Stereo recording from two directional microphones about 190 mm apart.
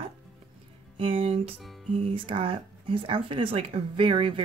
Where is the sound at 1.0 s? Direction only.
30° right (ahead or behind).